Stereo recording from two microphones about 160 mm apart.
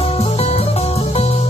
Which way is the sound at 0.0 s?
40° left (ahead or behind).